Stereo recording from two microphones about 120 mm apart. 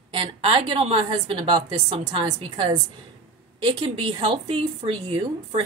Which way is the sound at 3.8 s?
45° right (ahead or behind).